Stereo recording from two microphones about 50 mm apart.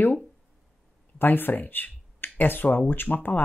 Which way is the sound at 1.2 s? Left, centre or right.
Left.